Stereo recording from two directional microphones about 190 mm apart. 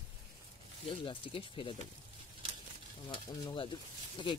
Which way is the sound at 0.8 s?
25° left (ahead or behind).